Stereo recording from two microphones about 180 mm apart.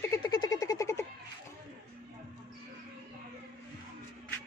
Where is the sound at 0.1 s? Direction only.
20° left (ahead or behind).